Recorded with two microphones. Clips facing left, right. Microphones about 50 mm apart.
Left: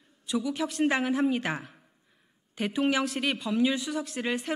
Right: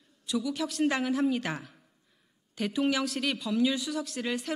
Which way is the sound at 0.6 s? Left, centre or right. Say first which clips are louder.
Left 2 dB; centre.